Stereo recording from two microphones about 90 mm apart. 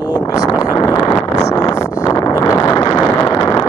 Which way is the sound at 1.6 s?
40° left (ahead or behind).